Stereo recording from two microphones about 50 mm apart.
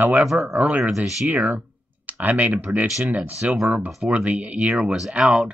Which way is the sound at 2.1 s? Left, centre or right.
Right.